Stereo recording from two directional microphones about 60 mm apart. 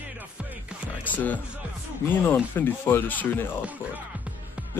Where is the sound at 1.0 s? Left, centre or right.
Left.